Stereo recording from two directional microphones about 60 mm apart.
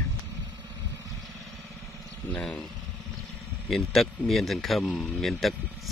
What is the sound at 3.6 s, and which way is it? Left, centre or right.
Speech, centre.